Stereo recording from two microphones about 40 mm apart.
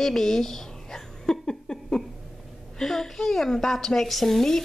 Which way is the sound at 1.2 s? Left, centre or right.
Centre.